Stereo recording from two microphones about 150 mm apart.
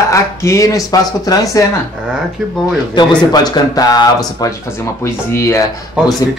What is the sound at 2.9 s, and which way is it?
Speech, 30° left (ahead or behind).